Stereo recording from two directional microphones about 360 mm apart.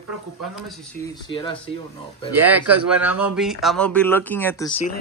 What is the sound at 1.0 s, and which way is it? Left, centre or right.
Speech, centre.